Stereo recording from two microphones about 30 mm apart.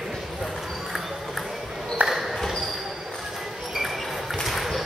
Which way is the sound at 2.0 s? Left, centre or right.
Right.